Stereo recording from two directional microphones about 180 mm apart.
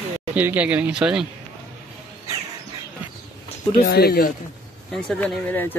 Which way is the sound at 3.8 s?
60° left (ahead or behind).